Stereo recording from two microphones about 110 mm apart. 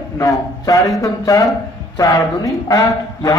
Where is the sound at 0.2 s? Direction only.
30° left (ahead or behind).